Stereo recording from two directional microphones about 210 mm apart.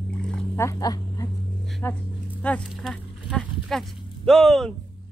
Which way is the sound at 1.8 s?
10° left (ahead or behind).